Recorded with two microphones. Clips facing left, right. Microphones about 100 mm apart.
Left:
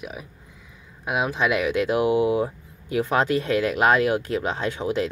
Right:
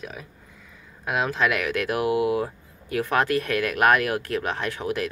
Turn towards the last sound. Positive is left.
turn(degrees=20)  # may be behind; listen again after turning